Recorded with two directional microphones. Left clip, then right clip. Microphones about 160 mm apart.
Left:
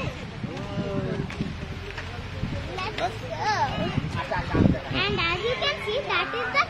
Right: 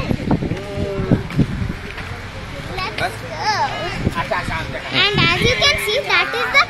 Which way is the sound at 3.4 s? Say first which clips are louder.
Right 6 dB; 15° right (ahead or behind).